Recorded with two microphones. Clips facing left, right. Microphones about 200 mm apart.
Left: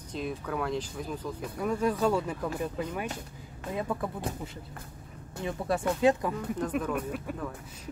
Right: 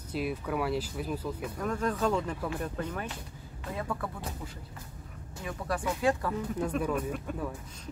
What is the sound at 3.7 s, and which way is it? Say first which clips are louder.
Speech: left 3 dB; 20° left (ahead or behind).